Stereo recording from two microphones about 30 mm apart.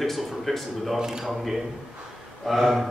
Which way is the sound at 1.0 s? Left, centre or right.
Right.